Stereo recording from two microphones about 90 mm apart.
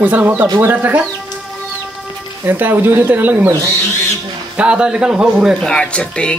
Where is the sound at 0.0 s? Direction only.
20° right (ahead or behind).